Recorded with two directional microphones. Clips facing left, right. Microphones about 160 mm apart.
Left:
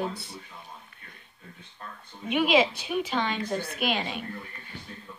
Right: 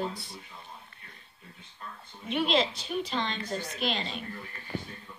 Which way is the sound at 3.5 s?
60° left (ahead or behind).